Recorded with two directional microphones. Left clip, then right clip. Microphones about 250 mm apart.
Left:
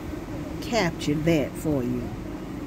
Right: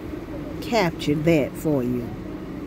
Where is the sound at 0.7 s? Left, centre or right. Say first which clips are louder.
Right 3 dB; centre.